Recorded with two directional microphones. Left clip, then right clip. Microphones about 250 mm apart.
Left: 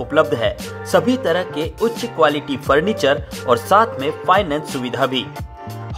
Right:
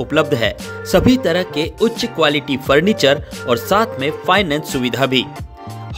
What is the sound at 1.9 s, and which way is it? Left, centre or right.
Speech, centre.